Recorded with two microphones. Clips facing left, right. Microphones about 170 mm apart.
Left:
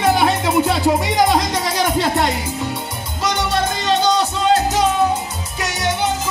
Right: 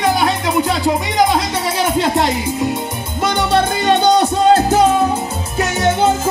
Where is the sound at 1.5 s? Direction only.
5° right (ahead or behind).